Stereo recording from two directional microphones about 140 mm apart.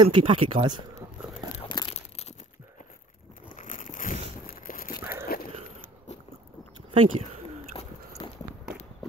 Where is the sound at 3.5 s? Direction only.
65° left (ahead or behind).